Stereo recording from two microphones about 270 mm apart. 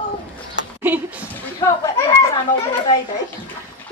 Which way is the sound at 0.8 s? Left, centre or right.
Centre.